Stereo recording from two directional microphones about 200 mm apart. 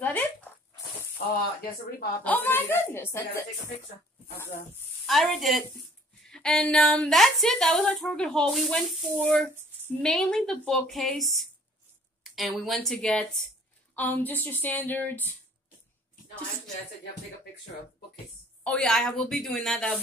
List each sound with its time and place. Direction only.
0.0 s zipper: 10° left (ahead or behind)
1.2 s speech: 50° left (ahead or behind)
2.2 s speech: 10° left (ahead or behind)
5.0 s a woman's voice: centre (ahead or behind)
18.6 s a woman's voice: 5° left (ahead or behind)